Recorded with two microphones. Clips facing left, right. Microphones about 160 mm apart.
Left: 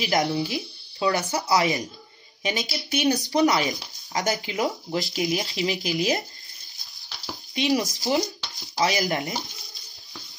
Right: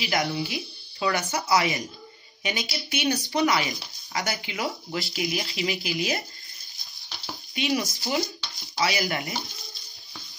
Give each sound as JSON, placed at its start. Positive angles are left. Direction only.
{"t": 0.0, "sound": "speech", "side_deg": 35}
{"t": 7.5, "sound": "speech", "side_deg": 40}